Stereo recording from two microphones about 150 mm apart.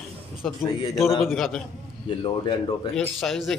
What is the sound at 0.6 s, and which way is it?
Speech, 25° left (ahead or behind).